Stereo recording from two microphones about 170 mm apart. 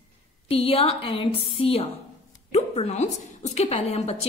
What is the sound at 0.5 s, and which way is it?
A woman's voice, 35° left (ahead or behind).